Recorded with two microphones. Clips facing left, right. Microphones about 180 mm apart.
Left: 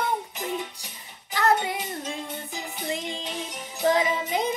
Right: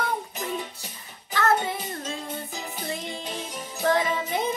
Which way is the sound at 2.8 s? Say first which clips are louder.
Left 3 dB; 15° left (ahead or behind).